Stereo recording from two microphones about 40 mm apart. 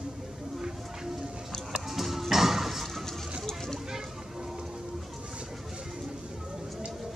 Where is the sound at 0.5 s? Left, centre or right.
Centre.